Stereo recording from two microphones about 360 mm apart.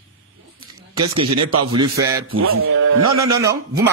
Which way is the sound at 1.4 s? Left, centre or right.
Right.